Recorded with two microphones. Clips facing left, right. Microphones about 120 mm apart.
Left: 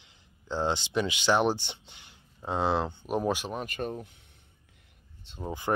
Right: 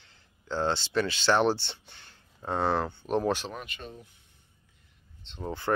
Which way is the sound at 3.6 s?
50° left (ahead or behind).